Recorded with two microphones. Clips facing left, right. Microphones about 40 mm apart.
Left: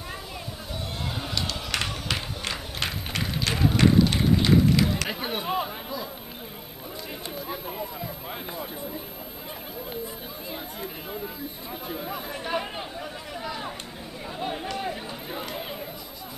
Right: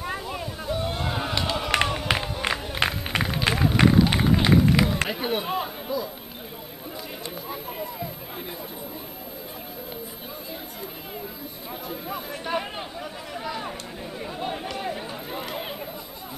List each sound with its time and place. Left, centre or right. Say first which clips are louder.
0.0 s run: right 6 dB; centre
5.0 s chatter: right 3 dB; centre
11.9 s a sound: even; centre
14.2 s chatter: even; centre